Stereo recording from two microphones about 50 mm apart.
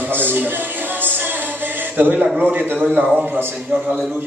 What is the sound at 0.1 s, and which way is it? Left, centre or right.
Music, right.